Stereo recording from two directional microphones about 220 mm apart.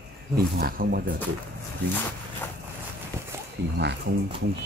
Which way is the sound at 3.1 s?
10° right (ahead or behind).